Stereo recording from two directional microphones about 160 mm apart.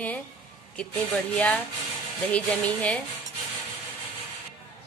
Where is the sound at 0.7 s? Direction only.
10° left (ahead or behind).